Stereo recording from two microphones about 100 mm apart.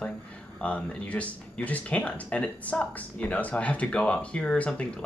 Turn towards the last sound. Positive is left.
turn(degrees=10)  # may be behind; listen again after turning